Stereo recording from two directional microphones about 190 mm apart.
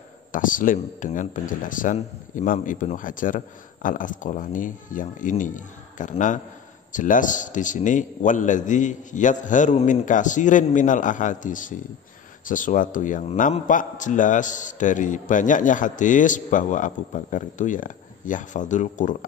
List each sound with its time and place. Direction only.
0.3 s a man's voice: 45° left (ahead or behind)